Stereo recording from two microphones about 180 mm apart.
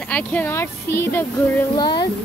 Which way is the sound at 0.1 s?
10° left (ahead or behind).